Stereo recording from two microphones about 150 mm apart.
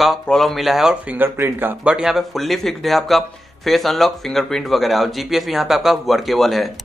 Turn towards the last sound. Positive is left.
turn(degrees=0)  # may be behind; listen again after turning